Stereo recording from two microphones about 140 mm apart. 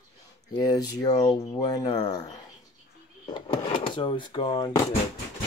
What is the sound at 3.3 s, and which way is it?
Speech, 40° left (ahead or behind).